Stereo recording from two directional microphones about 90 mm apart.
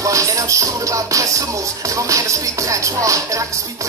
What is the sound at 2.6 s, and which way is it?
Music, 35° right (ahead or behind).